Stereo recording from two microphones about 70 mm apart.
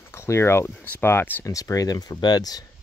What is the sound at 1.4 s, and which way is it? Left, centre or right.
Speech, left.